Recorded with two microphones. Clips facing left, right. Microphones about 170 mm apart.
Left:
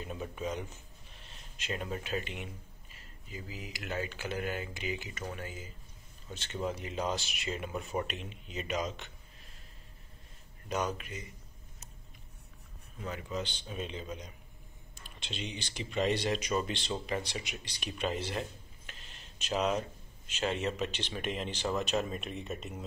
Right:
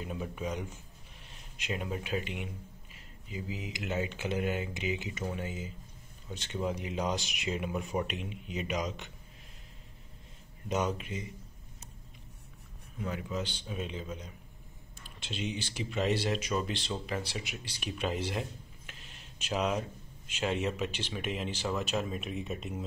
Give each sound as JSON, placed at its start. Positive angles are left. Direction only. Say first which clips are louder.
{"t": 0.0, "sound": "speech", "louder": "right 1 dB", "side_deg": -10}
{"t": 10.7, "sound": "speech", "louder": "right 2 dB", "side_deg": -20}
{"t": 13.0, "sound": "speech", "louder": "right 2 dB", "side_deg": -5}